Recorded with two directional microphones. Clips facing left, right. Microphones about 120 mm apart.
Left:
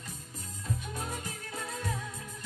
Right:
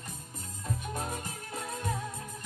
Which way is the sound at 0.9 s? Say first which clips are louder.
Right 2 dB; 50° right (ahead or behind).